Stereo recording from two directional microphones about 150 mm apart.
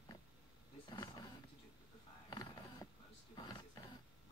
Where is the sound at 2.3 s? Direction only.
25° left (ahead or behind).